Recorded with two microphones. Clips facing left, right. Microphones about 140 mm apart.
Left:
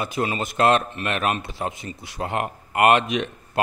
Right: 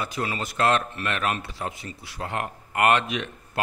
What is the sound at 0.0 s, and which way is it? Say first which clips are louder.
A man's voice: left 4 dB; 20° left (ahead or behind).